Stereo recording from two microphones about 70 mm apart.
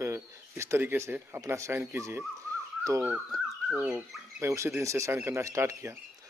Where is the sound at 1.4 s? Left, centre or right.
Right.